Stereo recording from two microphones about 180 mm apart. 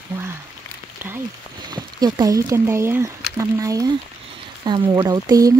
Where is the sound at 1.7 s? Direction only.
20° right (ahead or behind).